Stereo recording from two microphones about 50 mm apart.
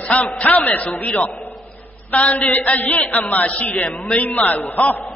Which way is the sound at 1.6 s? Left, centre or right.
Left.